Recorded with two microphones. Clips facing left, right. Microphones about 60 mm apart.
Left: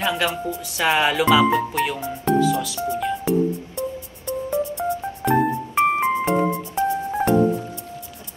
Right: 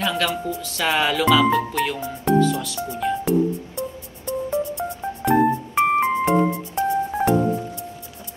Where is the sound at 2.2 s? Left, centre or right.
Centre.